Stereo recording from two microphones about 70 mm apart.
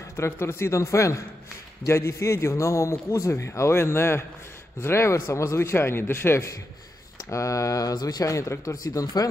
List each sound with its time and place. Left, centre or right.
0.1 s a man's voice: left
7.2 s speech: left
8.3 s speech: left
8.8 s speech: left